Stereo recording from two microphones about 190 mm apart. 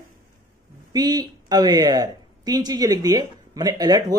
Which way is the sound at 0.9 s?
20° right (ahead or behind).